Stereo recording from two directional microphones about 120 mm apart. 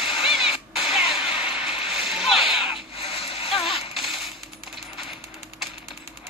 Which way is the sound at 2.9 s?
55° left (ahead or behind).